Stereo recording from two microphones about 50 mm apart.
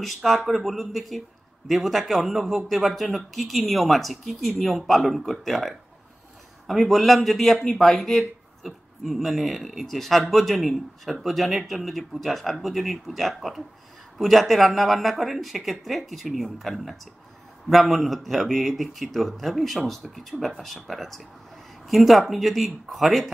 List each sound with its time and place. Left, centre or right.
0.0 s a man's voice: centre